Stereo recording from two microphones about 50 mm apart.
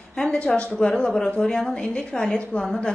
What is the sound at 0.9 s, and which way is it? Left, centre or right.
A woman's voice, centre.